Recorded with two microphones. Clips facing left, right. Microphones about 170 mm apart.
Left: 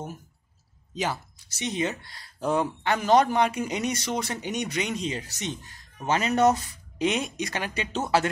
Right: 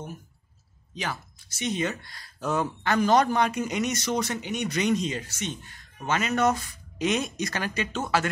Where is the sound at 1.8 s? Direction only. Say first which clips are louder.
Left 1 dB; 25° left (ahead or behind); by 4.6 s 10° left (ahead or behind).